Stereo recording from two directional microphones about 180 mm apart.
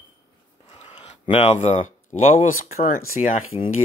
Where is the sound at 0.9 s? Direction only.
35° left (ahead or behind).